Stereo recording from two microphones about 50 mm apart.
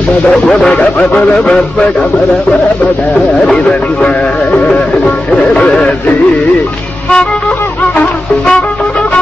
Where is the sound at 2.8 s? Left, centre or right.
Left.